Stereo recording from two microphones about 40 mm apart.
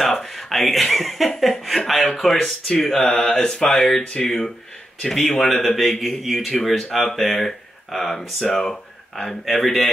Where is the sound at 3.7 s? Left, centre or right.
Centre.